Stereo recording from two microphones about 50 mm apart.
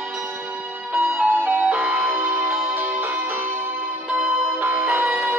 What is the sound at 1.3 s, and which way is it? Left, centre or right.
Music, right.